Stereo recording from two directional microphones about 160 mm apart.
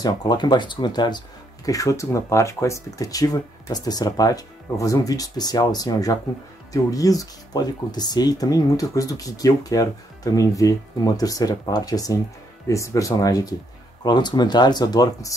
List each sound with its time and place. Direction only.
0.0 s speech: 25° left (ahead or behind)